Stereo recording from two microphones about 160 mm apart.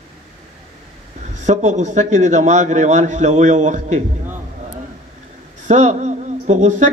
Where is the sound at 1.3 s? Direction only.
45° right (ahead or behind).